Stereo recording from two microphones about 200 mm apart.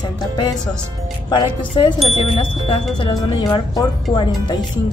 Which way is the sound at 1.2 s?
20° left (ahead or behind).